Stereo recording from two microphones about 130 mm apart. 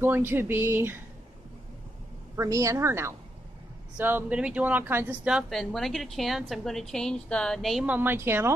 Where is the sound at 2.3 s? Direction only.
25° right (ahead or behind); by 7.9 s centre (ahead or behind).